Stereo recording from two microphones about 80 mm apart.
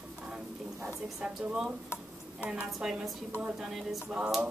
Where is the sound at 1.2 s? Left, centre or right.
Centre.